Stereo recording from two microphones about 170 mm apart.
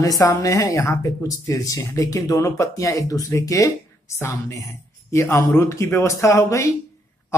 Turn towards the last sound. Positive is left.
turn(degrees=15)  # may be behind; listen again after turning